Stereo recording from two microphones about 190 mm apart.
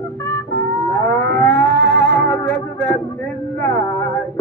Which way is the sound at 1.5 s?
70° right (ahead or behind).